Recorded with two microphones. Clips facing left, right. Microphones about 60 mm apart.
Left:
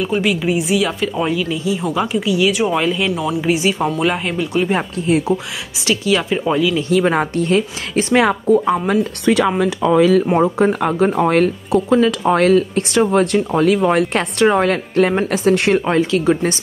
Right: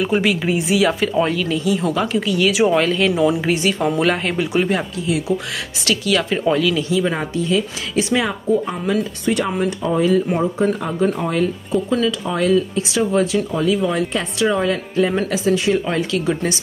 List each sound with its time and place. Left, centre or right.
0.0 s speech: centre
2.5 s speech: centre
4.4 s speech: centre
4.7 s speech: left
5.9 s speech: left
6.3 s speech: centre
6.9 s speech: left
8.2 s speech: left
9.2 s speech: left
10.4 s speech: left
15.8 s speech: left